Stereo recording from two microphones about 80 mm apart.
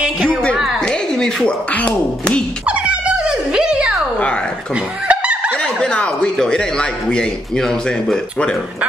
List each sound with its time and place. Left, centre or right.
0.7 s a sound: centre
1.7 s speech: centre
2.6 s dog: centre
5.0 s snicker: centre
5.6 s speech: centre